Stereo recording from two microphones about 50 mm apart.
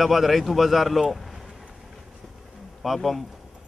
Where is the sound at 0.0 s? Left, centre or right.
Centre.